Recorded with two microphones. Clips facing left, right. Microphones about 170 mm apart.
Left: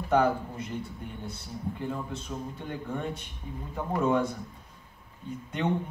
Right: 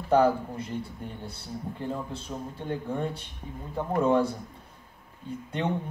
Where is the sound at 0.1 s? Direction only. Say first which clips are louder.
Right 3 dB; 30° right (ahead or behind).